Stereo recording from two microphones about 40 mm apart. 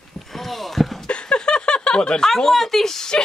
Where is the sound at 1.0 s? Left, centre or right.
Left.